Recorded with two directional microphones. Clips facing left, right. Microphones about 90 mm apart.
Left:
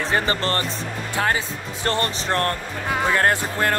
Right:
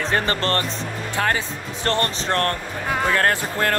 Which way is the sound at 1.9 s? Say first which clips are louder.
Right 1 dB; 15° left (ahead or behind).